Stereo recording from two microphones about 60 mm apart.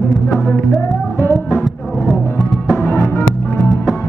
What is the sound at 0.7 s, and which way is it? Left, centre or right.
Music, left.